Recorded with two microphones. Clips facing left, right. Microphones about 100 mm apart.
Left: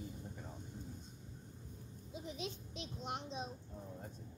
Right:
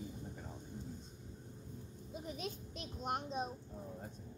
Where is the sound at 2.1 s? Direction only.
45° right (ahead or behind).